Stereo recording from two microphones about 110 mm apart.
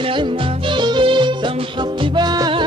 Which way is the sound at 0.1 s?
50° right (ahead or behind).